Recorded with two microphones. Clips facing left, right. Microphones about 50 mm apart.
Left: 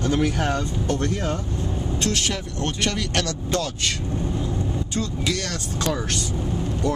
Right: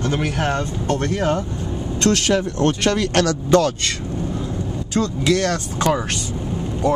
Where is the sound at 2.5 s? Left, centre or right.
Right.